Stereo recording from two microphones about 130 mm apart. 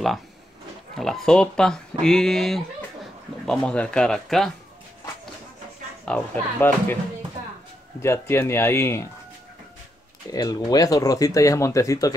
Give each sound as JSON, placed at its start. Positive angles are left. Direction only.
{"t": 0.9, "sound": "speech", "side_deg": 0}
{"t": 6.0, "sound": "speech", "side_deg": 15}
{"t": 8.0, "sound": "speech", "side_deg": 20}
{"t": 10.3, "sound": "speech", "side_deg": 30}